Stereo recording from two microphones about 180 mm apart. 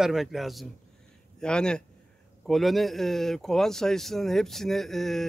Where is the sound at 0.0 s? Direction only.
Centre (ahead or behind).